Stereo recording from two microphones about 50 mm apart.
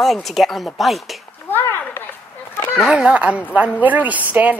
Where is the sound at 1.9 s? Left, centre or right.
Left.